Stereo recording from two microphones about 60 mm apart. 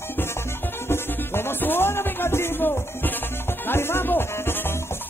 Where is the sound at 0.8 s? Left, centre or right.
Left.